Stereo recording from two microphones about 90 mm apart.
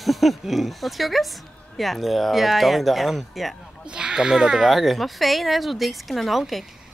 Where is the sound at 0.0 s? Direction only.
Centre (ahead or behind).